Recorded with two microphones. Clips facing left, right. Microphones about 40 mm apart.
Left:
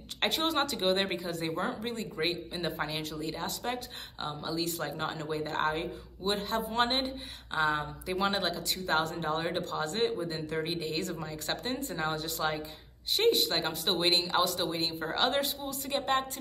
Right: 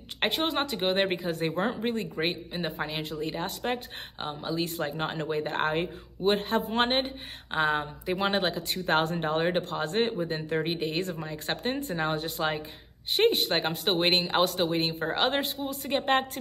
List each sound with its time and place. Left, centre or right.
0.2 s speech: right
1.0 s speech: right
2.5 s speech: centre
3.2 s speech: right
4.3 s speech: right
4.6 s speech: right